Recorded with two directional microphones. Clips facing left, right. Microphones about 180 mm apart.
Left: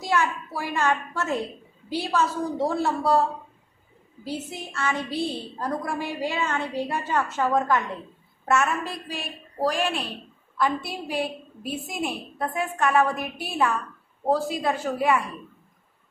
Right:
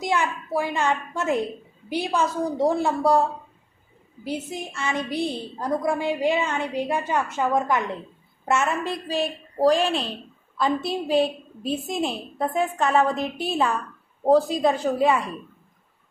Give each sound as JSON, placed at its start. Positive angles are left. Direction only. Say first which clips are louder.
{"t": 0.0, "sound": "a woman's voice", "louder": "even", "side_deg": -20}
{"t": 4.2, "sound": "a woman's voice", "louder": "right 3 dB", "side_deg": -15}
{"t": 9.6, "sound": "a woman's voice", "louder": "right 6 dB", "side_deg": -25}